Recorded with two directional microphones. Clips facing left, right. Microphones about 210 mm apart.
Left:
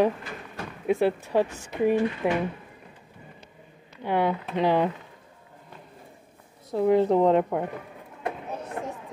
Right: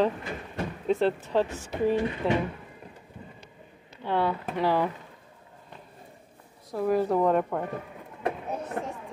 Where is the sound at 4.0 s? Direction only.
15° left (ahead or behind).